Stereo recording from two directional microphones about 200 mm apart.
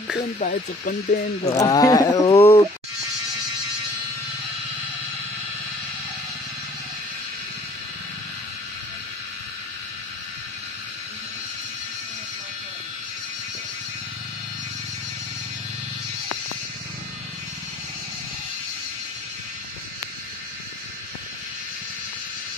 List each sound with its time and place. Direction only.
0.4 s speech: 45° left (ahead or behind)
1.4 s speech: 15° left (ahead or behind)